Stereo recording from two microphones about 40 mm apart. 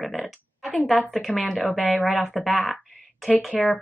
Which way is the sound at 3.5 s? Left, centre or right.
Centre.